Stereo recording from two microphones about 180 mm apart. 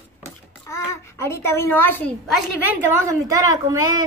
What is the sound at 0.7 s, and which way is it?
A child's voice, 15° left (ahead or behind).